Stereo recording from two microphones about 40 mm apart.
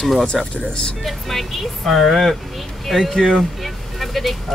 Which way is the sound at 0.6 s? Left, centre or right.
Centre.